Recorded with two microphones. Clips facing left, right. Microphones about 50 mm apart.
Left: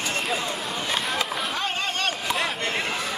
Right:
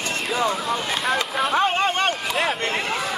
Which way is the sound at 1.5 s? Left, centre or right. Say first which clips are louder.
Right 11 dB; right.